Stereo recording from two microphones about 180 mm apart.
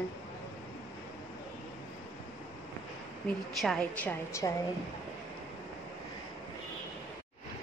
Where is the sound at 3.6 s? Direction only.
5° left (ahead or behind).